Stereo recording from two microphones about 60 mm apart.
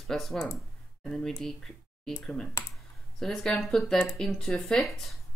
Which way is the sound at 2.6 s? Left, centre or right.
Left.